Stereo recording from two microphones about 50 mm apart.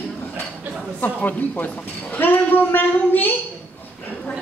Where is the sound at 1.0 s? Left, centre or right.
Left.